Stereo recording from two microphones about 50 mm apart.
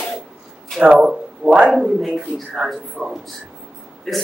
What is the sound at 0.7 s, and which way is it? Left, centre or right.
Speech, right.